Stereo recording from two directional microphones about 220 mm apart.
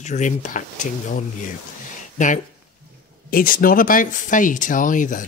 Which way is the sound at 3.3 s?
40° left (ahead or behind).